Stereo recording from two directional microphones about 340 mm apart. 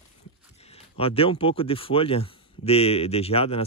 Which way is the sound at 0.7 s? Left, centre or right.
Centre.